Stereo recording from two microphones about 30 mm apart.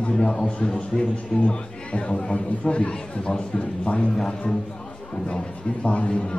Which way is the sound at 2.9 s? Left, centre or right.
Left.